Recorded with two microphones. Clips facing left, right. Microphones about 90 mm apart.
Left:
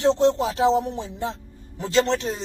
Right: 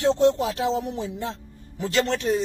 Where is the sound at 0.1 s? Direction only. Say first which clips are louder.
Even; 25° left (ahead or behind).